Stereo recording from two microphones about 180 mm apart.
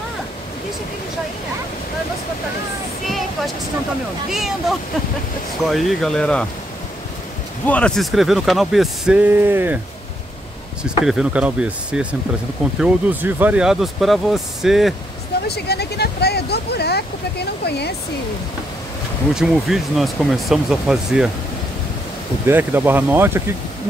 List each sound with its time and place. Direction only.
3.1 s a sound: centre (ahead or behind)
4.3 s speech: centre (ahead or behind)
7.6 s speech: 5° left (ahead or behind); by 9.8 s 10° right (ahead or behind)
10.8 s speech: 5° right (ahead or behind)
15.4 s speech: 65° left (ahead or behind)
19.3 s speech: 5° right (ahead or behind)
22.5 s speech: 10° right (ahead or behind)